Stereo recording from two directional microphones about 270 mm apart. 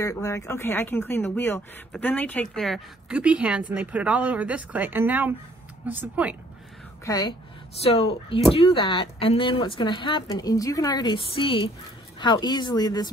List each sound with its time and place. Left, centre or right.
0.0 s speech: centre
7.1 s speech: centre